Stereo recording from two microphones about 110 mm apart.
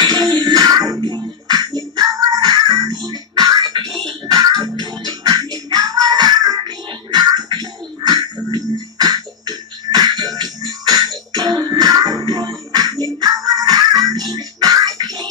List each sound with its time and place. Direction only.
0.0 s music: 40° right (ahead or behind)